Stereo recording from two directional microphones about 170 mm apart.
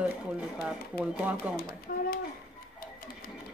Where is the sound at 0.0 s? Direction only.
5° right (ahead or behind).